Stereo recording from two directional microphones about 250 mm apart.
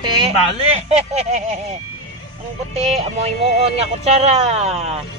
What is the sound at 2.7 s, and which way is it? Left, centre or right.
Speech, right.